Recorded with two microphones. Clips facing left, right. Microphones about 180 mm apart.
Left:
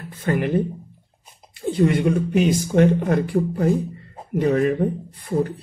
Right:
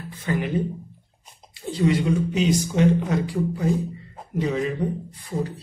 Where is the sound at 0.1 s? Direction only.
55° left (ahead or behind).